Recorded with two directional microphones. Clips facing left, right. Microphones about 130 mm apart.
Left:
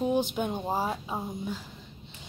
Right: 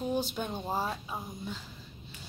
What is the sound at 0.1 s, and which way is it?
Speech, 15° left (ahead or behind).